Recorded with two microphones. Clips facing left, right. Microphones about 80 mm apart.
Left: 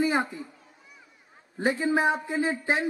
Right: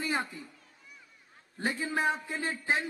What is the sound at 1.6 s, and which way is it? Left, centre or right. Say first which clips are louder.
A man's voice: left 7 dB; centre.